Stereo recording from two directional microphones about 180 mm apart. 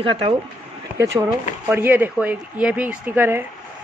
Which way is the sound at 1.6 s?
10° right (ahead or behind).